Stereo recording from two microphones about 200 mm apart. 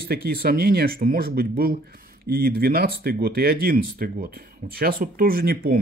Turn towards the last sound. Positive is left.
turn(degrees=-45)  # may be behind; listen again after turning